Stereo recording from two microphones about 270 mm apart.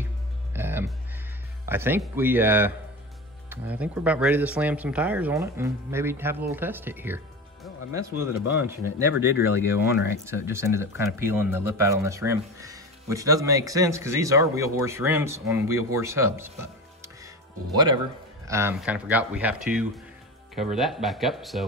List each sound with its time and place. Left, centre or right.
0.5 s music: centre
1.7 s speech: centre
17.7 s speech: centre